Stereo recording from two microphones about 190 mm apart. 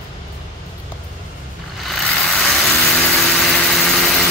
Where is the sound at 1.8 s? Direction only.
Centre (ahead or behind).